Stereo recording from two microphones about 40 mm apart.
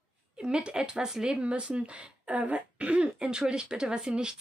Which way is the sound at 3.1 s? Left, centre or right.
Right.